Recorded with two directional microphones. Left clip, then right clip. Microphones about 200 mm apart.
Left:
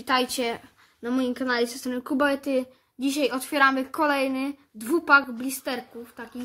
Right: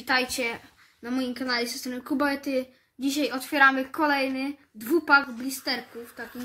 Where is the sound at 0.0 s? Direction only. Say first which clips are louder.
Left 1 dB; 50° left (ahead or behind).